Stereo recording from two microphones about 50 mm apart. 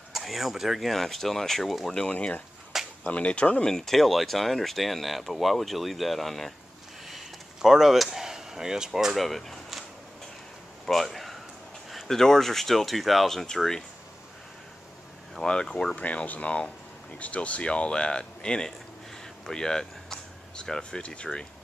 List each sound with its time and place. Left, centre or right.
0.1 s speech: centre
2.1 s speech: left
3.7 s speech: centre
7.1 s a sound: centre
10.9 s speech: centre
15.4 s speech: centre
16.0 s speech: left